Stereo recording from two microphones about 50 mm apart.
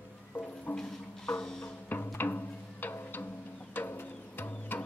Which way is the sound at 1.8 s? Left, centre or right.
Left.